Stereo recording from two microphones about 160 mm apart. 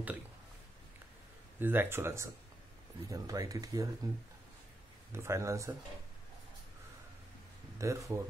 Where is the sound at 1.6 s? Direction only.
15° right (ahead or behind).